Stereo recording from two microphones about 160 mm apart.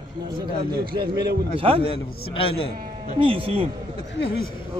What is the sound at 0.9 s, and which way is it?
Speech, 30° right (ahead or behind).